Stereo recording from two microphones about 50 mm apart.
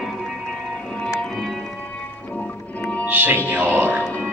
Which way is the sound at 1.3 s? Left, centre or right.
Centre.